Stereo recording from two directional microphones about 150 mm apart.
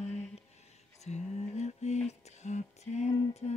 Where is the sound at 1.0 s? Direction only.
50° left (ahead or behind).